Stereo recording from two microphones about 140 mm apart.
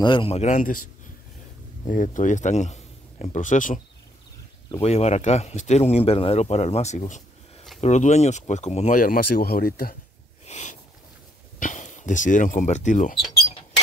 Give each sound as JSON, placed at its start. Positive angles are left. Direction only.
{"t": 0.0, "sound": "speech", "side_deg": 40}
{"t": 1.9, "sound": "speech", "side_deg": 70}
{"t": 4.8, "sound": "speech", "side_deg": 50}
{"t": 8.9, "sound": "speech", "side_deg": 85}
{"t": 10.4, "sound": "a sound", "side_deg": 55}
{"t": 11.6, "sound": "speech", "side_deg": 60}